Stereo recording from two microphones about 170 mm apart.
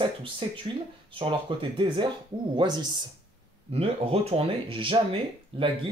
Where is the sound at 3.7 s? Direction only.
35° right (ahead or behind).